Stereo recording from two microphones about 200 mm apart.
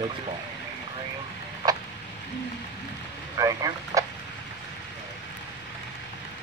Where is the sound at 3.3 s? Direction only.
15° right (ahead or behind).